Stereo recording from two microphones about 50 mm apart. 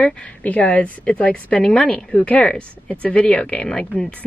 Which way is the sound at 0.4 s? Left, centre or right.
Left.